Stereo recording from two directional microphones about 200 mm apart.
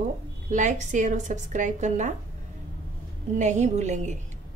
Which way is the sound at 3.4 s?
35° right (ahead or behind).